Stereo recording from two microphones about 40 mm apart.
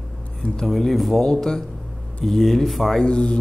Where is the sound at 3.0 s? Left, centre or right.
Left.